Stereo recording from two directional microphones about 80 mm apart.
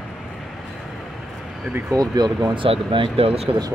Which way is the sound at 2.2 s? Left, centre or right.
Right.